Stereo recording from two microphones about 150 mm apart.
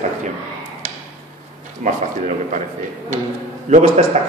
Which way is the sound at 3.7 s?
50° right (ahead or behind).